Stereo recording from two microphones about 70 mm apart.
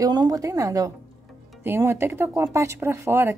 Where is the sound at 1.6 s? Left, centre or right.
Right.